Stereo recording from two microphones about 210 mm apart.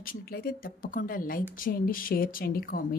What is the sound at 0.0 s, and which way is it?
A woman's voice, 45° left (ahead or behind).